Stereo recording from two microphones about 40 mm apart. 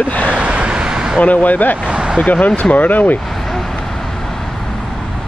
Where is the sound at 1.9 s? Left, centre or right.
Right.